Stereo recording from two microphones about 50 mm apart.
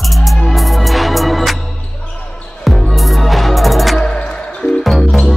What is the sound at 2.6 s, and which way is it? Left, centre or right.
Music, centre.